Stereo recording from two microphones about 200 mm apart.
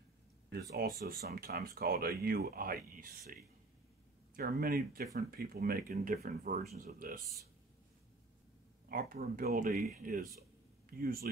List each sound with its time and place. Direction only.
0.5 s speech: 45° right (ahead or behind)
4.4 s speech: 50° right (ahead or behind)
8.8 s speech: 45° right (ahead or behind)